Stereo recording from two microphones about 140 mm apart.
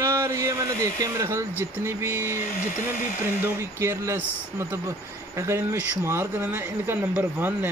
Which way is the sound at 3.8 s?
20° right (ahead or behind).